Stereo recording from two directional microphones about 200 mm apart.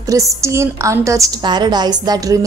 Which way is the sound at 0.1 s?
15° right (ahead or behind).